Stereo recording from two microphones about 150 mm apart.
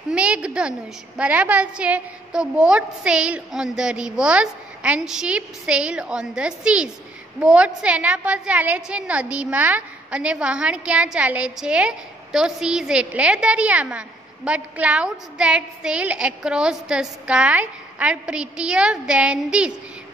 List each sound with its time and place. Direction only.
0.1 s a woman's voice: 5° right (ahead or behind)